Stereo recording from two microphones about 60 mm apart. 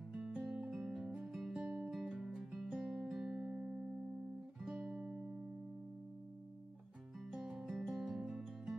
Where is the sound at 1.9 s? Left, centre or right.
Centre; by 4.0 s right.